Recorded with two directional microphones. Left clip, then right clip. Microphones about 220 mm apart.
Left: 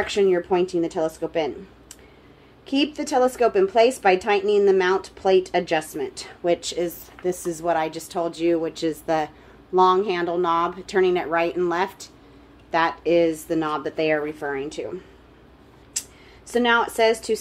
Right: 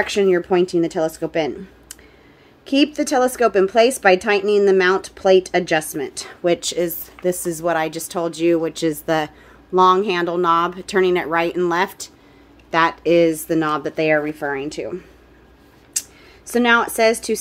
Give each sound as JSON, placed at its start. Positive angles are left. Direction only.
{"t": 0.0, "sound": "a woman's voice", "side_deg": -60}
{"t": 16.0, "sound": "a sound", "side_deg": -60}
{"t": 16.4, "sound": "a woman's voice", "side_deg": -60}